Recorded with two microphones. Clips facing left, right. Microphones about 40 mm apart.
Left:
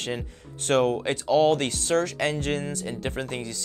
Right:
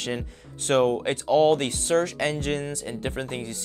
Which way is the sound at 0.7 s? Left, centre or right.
Right.